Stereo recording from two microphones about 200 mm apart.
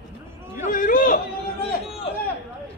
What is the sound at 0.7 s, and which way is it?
Speech, 45° left (ahead or behind).